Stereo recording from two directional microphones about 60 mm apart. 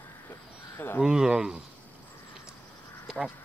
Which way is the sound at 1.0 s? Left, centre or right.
Centre.